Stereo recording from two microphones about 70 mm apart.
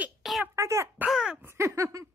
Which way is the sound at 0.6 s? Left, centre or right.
Right.